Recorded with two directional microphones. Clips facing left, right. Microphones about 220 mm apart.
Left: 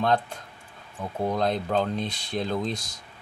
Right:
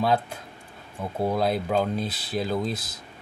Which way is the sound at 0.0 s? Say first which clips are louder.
Right 1 dB; 5° right (ahead or behind).